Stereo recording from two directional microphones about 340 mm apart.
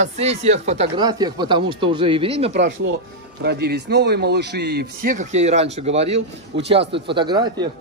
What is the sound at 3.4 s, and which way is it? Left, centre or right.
Speech, right.